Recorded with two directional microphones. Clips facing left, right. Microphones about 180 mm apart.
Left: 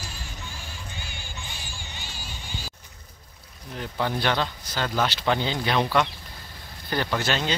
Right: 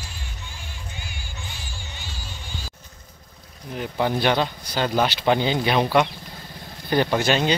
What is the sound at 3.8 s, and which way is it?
Speech, 15° right (ahead or behind).